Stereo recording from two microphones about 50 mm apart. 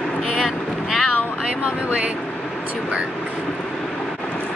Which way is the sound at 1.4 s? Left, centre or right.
Centre.